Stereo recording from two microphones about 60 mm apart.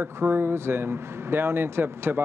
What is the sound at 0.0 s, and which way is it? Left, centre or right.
Speech, right.